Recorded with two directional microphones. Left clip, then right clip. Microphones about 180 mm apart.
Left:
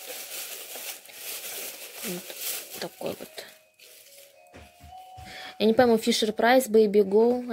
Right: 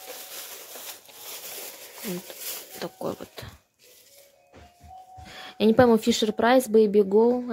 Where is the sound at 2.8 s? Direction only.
20° right (ahead or behind).